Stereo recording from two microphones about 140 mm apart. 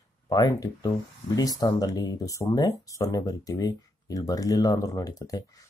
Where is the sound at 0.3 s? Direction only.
25° left (ahead or behind).